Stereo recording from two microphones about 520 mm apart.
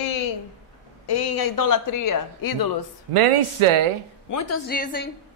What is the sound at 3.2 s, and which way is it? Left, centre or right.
Speech, right.